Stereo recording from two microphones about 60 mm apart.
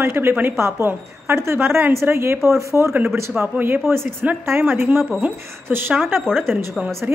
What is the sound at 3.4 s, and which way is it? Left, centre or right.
A woman's voice, right.